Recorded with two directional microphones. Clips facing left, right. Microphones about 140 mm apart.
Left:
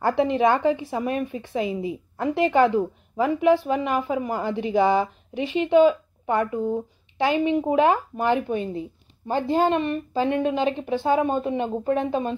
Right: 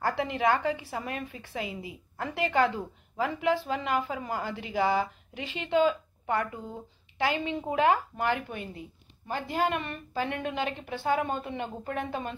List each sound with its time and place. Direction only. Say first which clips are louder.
0.0 s a woman's voice: left 7 dB; 20° left (ahead or behind)